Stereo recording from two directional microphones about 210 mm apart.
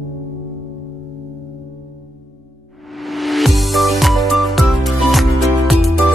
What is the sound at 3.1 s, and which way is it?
Music, centre (ahead or behind).